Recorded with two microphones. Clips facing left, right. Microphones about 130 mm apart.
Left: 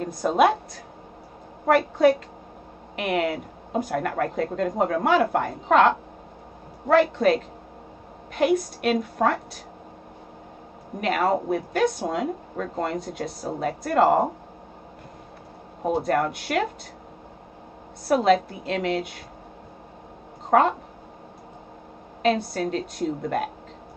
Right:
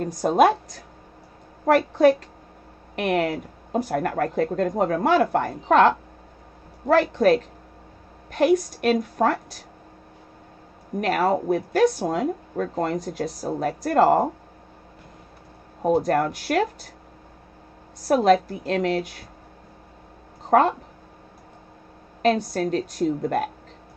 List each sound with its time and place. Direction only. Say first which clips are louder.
0.0 s speech: right 2 dB; 40° right (ahead or behind)
2.0 s speech: right 2 dB; 40° right (ahead or behind)
11.0 s speech: right 1 dB; 40° right (ahead or behind)
15.9 s speech: right 3 dB; 45° right (ahead or behind)
18.0 s speech: right 2 dB; 40° right (ahead or behind)
20.4 s speech: right 1 dB; 40° right (ahead or behind)
22.2 s a woman's voice: right 2 dB; 45° right (ahead or behind)